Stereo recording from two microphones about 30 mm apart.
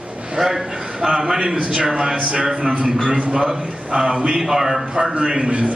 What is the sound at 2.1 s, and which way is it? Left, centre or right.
A man's voice, right.